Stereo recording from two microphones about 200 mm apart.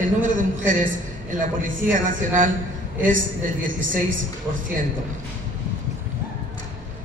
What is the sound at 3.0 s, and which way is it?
A man's voice, 40° right (ahead or behind).